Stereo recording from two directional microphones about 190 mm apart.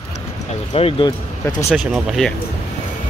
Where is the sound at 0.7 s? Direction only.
30° left (ahead or behind).